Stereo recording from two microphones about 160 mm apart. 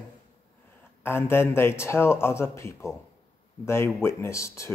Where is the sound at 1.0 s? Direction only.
15° left (ahead or behind).